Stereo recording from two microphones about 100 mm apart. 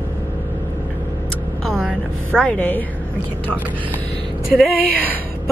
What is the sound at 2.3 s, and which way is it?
Speech, 10° left (ahead or behind).